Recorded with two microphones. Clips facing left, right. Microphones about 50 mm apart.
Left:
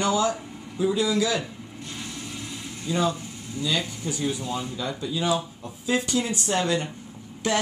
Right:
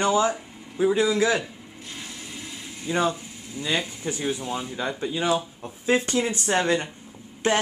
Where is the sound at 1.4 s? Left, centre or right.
Centre.